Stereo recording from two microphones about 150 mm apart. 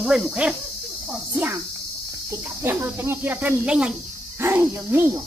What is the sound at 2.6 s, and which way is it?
Speech, 15° right (ahead or behind).